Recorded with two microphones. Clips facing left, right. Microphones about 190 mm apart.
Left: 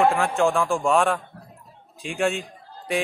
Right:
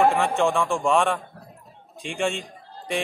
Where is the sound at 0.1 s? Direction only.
Centre (ahead or behind).